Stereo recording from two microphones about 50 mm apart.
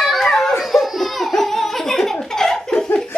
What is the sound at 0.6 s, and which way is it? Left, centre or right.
Laughter, centre.